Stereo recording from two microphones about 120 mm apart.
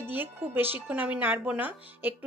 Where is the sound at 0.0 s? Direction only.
15° right (ahead or behind).